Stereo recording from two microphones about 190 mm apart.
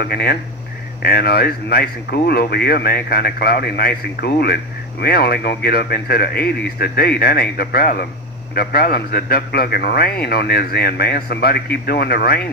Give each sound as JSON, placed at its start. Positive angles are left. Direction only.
{"t": 0.0, "sound": "a man's voice", "side_deg": 55}